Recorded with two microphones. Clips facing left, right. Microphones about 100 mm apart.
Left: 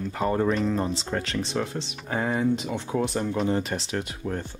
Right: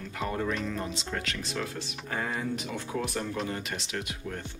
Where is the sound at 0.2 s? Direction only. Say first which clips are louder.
Left 7 dB; 35° left (ahead or behind).